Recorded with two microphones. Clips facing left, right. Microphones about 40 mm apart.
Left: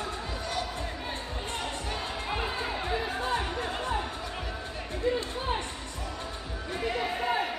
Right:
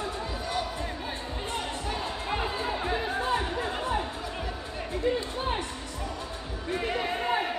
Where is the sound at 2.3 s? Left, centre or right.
Centre.